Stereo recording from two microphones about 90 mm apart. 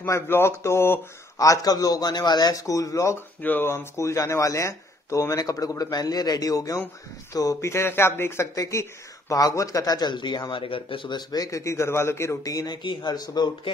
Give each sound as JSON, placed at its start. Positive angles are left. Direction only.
{"t": 0.0, "sound": "speech", "side_deg": 30}
{"t": 1.4, "sound": "speech", "side_deg": 40}
{"t": 3.3, "sound": "speech", "side_deg": 20}
{"t": 3.7, "sound": "speech", "side_deg": 35}
{"t": 10.5, "sound": "speech", "side_deg": 75}
{"t": 11.1, "sound": "speech", "side_deg": 45}
{"t": 12.7, "sound": "speech", "side_deg": 60}